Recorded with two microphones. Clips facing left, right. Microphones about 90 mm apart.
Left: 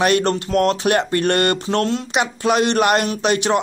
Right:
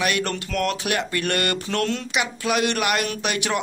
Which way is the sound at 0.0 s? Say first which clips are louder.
Left 7 dB; 35° left (ahead or behind).